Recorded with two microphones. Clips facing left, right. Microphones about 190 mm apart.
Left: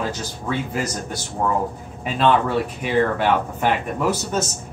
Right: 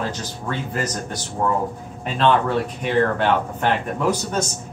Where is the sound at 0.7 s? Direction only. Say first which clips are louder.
Even; 10° left (ahead or behind).